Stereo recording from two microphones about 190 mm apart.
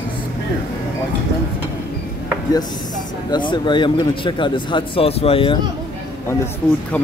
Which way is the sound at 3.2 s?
25° left (ahead or behind).